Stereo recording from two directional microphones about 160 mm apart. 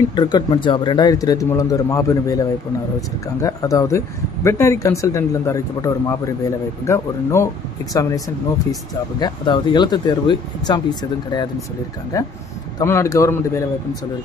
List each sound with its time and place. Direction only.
0.1 s a man's voice: 25° left (ahead or behind)
9.2 s a man's voice: 30° left (ahead or behind)